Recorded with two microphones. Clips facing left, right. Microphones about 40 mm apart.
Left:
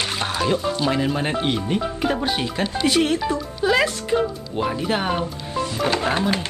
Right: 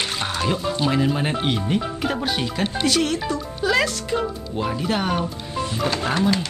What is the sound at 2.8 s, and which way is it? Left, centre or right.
Speech, left.